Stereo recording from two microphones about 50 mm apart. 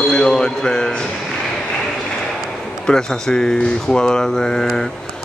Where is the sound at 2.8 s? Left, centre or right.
Centre.